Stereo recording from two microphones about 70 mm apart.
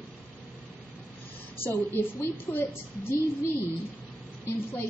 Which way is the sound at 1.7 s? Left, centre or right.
Left.